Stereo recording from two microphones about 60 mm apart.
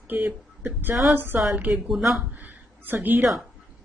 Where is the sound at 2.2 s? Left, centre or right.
Right.